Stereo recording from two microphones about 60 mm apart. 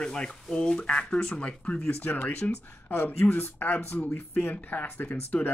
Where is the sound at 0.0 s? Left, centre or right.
Centre.